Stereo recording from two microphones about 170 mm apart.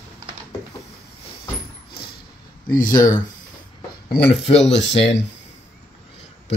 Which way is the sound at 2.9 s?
20° left (ahead or behind).